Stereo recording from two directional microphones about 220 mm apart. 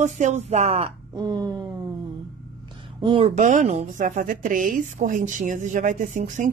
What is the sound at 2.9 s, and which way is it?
A woman's voice, 25° right (ahead or behind).